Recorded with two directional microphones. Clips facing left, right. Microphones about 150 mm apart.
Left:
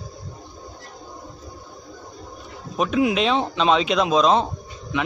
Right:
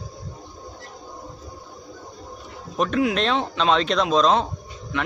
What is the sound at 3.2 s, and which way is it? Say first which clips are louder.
Speech: left 2 dB; 5° left (ahead or behind).